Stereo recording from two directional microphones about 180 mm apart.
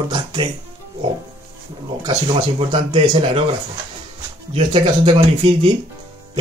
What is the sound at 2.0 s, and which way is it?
Speech, 25° right (ahead or behind).